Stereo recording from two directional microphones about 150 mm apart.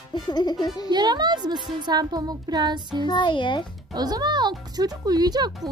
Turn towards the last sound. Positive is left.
turn(degrees=-25)  # may be behind; listen again after turning